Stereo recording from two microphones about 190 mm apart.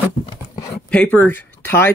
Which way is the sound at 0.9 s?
10° left (ahead or behind).